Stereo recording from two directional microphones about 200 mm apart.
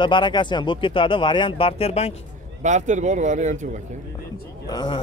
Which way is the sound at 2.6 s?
35° right (ahead or behind).